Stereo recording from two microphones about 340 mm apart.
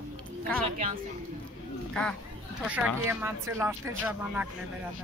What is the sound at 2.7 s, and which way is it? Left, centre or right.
Speech, centre.